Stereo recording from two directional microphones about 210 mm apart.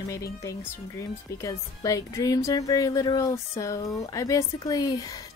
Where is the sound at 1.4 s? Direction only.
15° left (ahead or behind).